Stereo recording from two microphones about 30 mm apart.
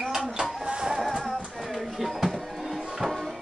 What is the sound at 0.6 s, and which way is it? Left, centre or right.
Music, right.